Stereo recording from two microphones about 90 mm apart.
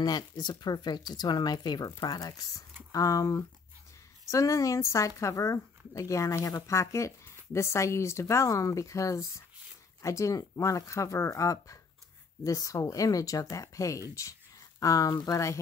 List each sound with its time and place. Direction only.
0.0 s speech: 50° left (ahead or behind)